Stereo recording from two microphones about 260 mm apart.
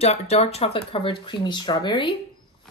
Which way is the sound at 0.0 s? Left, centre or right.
Left.